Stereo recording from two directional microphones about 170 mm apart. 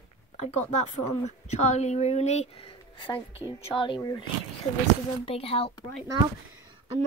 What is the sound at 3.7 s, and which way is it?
Speech, 30° left (ahead or behind).